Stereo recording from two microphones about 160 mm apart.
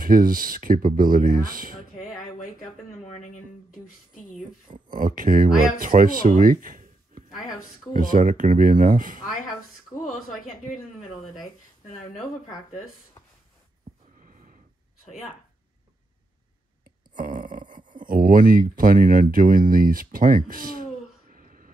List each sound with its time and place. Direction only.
0.0 s speech: 60° right (ahead or behind)
4.9 s speech: 60° right (ahead or behind)
7.2 s a sound: centre (ahead or behind)
7.9 s speech: 60° right (ahead or behind)
17.1 s a sound: 55° right (ahead or behind)
17.9 s speech: 60° right (ahead or behind)